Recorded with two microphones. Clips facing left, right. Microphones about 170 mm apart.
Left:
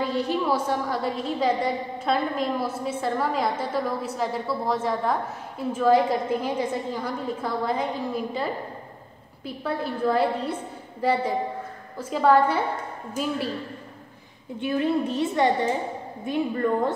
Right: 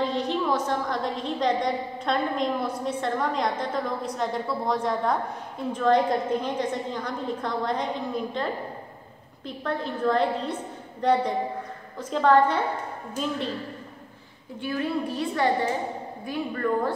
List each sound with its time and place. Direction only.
0.0 s a woman's voice: 10° left (ahead or behind)
9.6 s a woman's voice: 10° left (ahead or behind)
14.6 s a woman's voice: 20° left (ahead or behind)